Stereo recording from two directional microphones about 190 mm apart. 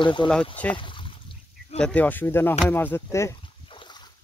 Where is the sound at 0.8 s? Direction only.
25° left (ahead or behind).